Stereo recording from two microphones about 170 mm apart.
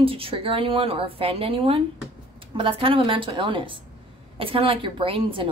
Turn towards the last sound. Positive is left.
turn(degrees=-30)  # may be behind; listen again after turning